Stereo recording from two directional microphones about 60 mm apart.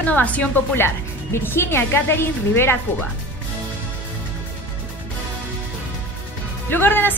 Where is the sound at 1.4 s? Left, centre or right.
Left.